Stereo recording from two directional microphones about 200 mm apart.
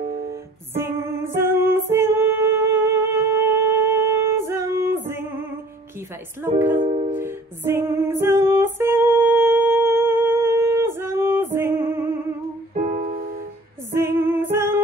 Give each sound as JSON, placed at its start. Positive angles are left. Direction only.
{"t": 0.3, "sound": "music", "side_deg": -10}
{"t": 6.8, "sound": "music", "side_deg": -30}
{"t": 7.2, "sound": "music", "side_deg": -10}
{"t": 13.9, "sound": "music", "side_deg": -10}